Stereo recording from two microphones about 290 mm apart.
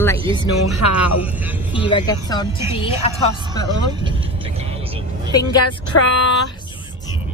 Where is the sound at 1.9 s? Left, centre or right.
Centre.